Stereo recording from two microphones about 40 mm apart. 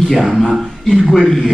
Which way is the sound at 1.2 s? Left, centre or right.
Centre.